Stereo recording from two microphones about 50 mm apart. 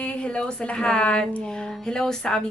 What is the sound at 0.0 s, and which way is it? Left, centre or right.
A woman's voice, left.